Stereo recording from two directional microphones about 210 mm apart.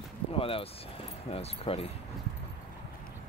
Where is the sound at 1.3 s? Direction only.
30° left (ahead or behind).